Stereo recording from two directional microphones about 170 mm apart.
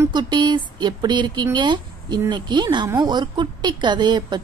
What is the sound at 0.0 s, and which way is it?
A woman's voice, 25° right (ahead or behind).